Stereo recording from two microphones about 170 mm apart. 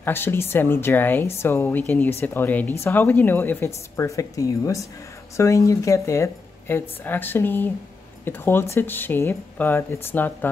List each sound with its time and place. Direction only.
0.0 s speech: 15° left (ahead or behind)